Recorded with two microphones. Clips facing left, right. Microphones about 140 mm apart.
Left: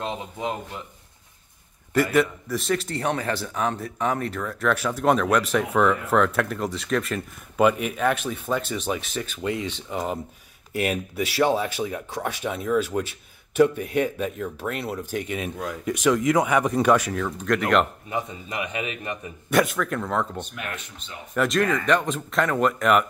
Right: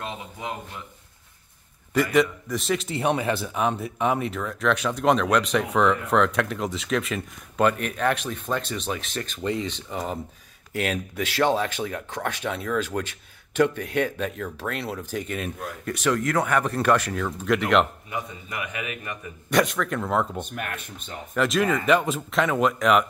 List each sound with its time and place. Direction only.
0.0 s a man's voice: 25° left (ahead or behind)
2.1 s a man's voice: centre (ahead or behind)
17.1 s a man's voice: centre (ahead or behind)
18.1 s a man's voice: 25° left (ahead or behind)
19.5 s a man's voice: 5° left (ahead or behind)
20.3 s speech: 50° right (ahead or behind)
21.3 s a man's voice: centre (ahead or behind)